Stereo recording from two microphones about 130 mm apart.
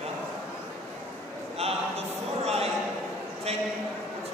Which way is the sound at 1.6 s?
50° right (ahead or behind).